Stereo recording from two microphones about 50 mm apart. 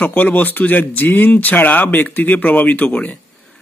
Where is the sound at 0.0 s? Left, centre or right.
Left.